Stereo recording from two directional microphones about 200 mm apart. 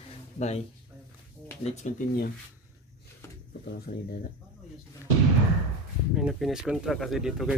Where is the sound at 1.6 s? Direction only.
35° left (ahead or behind).